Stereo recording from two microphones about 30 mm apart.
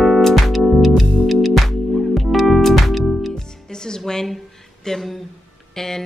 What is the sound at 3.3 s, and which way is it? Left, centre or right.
Music, left.